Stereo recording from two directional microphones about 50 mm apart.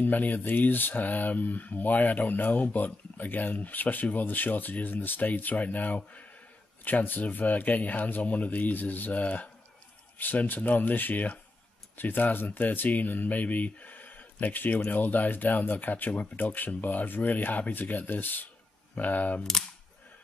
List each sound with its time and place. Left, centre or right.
0.0 s speech: left